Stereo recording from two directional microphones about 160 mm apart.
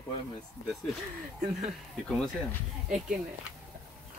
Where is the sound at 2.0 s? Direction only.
5° left (ahead or behind).